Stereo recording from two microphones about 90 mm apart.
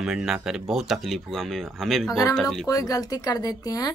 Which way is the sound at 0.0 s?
5° right (ahead or behind).